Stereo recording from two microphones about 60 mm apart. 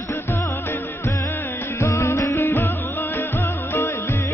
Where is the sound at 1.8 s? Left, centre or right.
Left.